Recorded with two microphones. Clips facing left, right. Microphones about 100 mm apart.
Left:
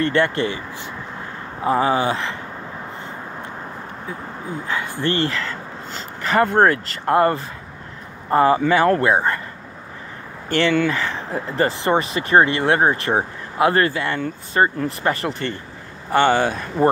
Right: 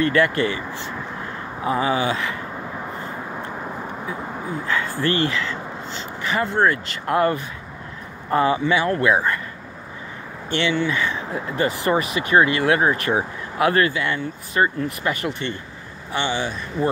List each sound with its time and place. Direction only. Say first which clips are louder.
0.0 s speech: even; 30° left (ahead or behind)
1.6 s speech: left 3 dB; 35° left (ahead or behind)
4.6 s speech: even; 20° left (ahead or behind)
5.1 s speech: even; 35° left (ahead or behind); by 6.8 s 50° left (ahead or behind)
6.9 s speech: left 3 dB; 35° left (ahead or behind)
10.5 s speech: left 3 dB; 50° left (ahead or behind)
16.1 s speech: left 8 dB; 50° left (ahead or behind)